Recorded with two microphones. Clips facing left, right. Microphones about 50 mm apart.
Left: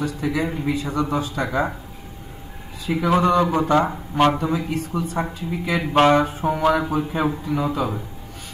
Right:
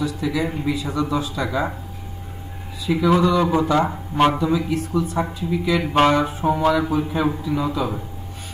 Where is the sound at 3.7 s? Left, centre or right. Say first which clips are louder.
Left 1 dB; centre.